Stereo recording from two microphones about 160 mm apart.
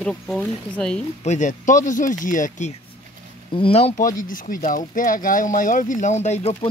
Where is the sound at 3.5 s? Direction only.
35° left (ahead or behind).